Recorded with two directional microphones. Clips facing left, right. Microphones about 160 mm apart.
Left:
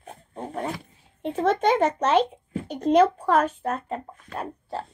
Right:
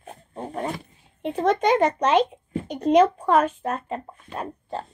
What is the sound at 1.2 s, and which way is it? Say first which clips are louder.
Speech: right 1 dB; 10° right (ahead or behind).